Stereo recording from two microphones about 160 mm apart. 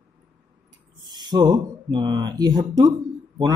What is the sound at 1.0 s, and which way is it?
Speech, 25° right (ahead or behind).